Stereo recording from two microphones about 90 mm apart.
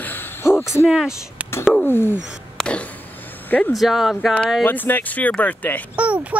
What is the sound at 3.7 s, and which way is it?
Speech, 5° right (ahead or behind).